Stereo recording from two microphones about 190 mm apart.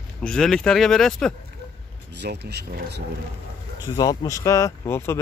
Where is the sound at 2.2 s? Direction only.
60° right (ahead or behind).